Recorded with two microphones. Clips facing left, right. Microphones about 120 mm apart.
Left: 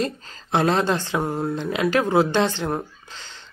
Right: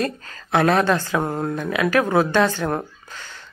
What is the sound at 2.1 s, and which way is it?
Speech, 25° left (ahead or behind).